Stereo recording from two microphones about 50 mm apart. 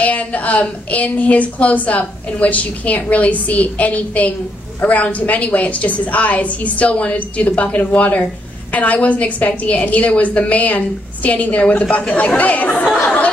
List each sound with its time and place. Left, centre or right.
0.0 s a woman's voice: left